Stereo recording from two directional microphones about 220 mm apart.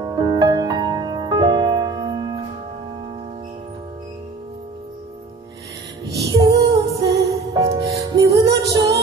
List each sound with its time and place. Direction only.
0.0 s music: 20° right (ahead or behind)
6.0 s music: 15° right (ahead or behind)